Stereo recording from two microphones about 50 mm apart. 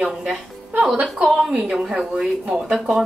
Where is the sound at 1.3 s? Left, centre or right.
Centre.